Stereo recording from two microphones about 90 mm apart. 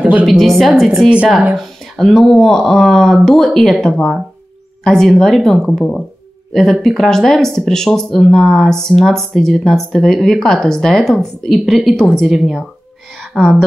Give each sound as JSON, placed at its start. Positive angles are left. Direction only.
{"t": 0.0, "sound": "a sound", "side_deg": -15}
{"t": 0.3, "sound": "speech", "side_deg": 0}
{"t": 1.1, "sound": "speech", "side_deg": -15}
{"t": 1.6, "sound": "a woman's voice", "side_deg": 5}